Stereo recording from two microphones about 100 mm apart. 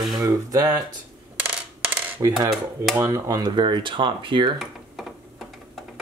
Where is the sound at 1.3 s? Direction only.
15° right (ahead or behind).